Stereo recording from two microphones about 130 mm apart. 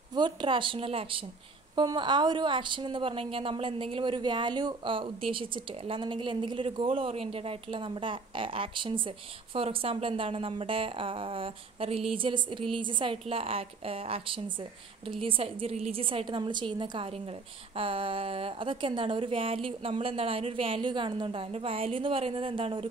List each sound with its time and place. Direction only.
0.1 s a woman's voice: 35° right (ahead or behind)